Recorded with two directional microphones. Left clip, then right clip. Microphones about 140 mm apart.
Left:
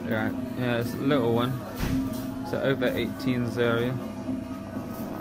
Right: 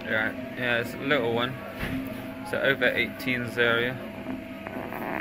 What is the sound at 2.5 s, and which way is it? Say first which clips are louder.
Speech: right 3 dB; 15° left (ahead or behind).